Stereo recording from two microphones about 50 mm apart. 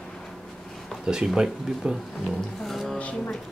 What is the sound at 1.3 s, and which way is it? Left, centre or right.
Speech, centre.